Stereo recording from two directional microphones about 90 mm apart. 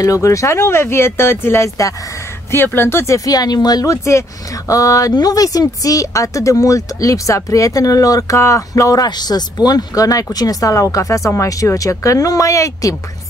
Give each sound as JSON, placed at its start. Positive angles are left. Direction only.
{"t": 0.0, "sound": "speech", "side_deg": 35}
{"t": 2.5, "sound": "speech", "side_deg": 25}
{"t": 3.3, "sound": "speech", "side_deg": 45}